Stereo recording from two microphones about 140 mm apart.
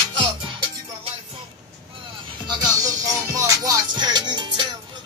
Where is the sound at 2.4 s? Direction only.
30° right (ahead or behind).